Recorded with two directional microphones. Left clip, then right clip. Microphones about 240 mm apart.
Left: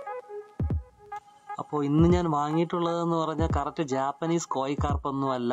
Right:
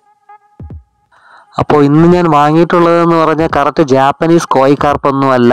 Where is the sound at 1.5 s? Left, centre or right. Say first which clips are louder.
Right 19 dB; right.